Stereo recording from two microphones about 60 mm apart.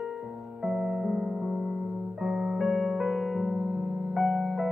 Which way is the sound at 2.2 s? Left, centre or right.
Centre.